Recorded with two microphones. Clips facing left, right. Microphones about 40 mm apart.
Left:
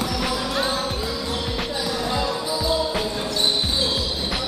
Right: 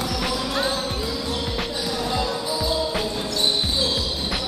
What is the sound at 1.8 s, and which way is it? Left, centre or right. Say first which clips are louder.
Basketball bounce: left 1 dB; centre.